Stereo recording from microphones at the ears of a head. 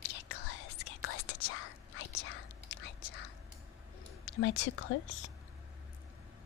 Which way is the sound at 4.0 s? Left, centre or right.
Left.